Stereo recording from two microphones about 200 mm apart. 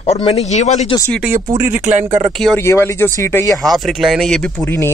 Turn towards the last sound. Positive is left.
turn(degrees=10)  # may be behind; listen again after turning